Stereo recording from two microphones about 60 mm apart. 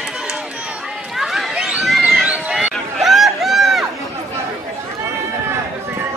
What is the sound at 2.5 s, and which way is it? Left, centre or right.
Run, centre.